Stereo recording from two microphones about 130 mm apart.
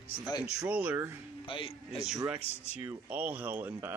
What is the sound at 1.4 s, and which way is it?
Speech, 45° left (ahead or behind).